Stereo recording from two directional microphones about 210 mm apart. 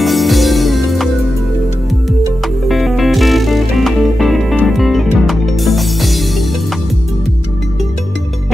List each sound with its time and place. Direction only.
0.0 s music: centre (ahead or behind)
2.7 s music: centre (ahead or behind)